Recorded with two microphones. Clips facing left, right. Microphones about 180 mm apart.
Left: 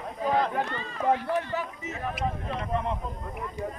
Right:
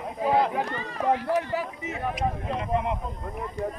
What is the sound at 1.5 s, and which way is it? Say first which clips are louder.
Speech: right 3 dB; 10° right (ahead or behind).